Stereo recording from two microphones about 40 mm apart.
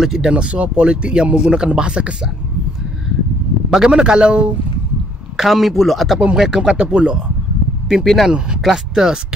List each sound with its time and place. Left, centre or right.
0.0 s speech: centre
0.3 s speech: right
3.7 s speech: centre
5.4 s a man's voice: centre
6.9 s speech: right
8.0 s a man's voice: centre